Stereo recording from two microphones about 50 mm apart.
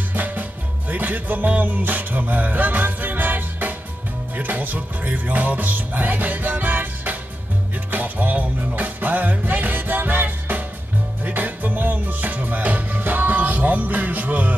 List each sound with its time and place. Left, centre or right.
0.1 s music: right